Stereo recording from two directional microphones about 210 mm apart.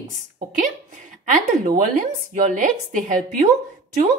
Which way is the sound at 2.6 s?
40° right (ahead or behind).